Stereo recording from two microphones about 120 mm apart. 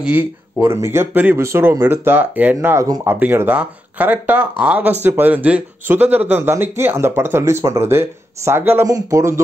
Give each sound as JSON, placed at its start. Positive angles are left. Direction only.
{"t": 0.0, "sound": "speech", "side_deg": -15}